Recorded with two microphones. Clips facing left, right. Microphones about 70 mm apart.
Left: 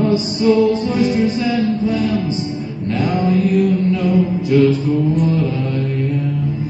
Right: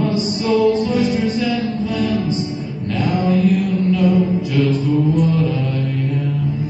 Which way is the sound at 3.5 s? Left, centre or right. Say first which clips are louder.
Left 2 dB; centre.